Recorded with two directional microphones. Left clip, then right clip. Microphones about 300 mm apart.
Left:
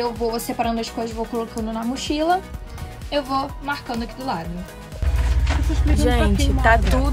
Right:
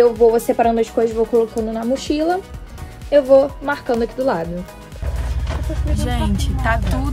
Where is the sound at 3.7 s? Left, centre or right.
Centre.